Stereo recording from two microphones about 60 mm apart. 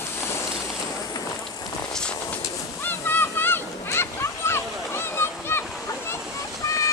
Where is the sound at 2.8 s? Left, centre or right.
Left.